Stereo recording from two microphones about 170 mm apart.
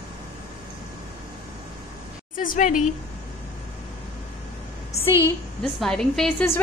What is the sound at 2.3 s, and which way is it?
Speech, 55° left (ahead or behind).